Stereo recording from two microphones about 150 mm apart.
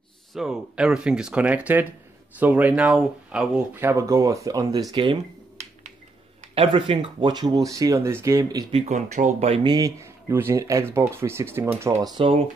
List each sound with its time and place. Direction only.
0.3 s speech: 5° right (ahead or behind); by 5.2 s 35° right (ahead or behind)
6.5 s speech: 35° right (ahead or behind)
8.7 s speech: 50° right (ahead or behind)
9.5 s speech: 30° right (ahead or behind)
12.2 s speech: 35° right (ahead or behind)